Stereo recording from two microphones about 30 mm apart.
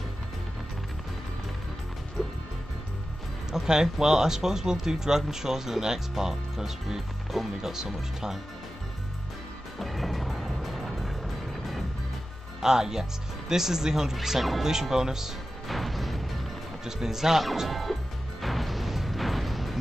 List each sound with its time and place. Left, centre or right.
3.6 s speech: centre
7.2 s speech: centre
7.7 s speech: centre
9.8 s music: centre
12.6 s speech: centre
15.7 s music: centre
16.8 s a man's voice: centre
17.6 s speech: centre
18.4 s music: centre